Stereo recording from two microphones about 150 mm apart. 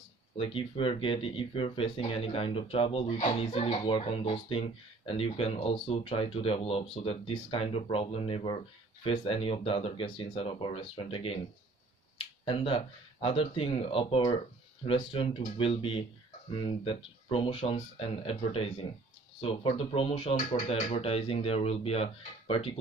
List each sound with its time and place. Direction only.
0.4 s speech: 35° left (ahead or behind)